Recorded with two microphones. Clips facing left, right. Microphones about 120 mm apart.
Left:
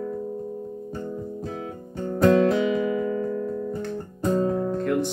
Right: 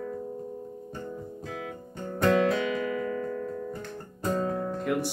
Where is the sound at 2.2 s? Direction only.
35° left (ahead or behind).